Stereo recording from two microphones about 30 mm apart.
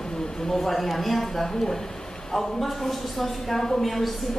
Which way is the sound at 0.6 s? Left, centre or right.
Centre.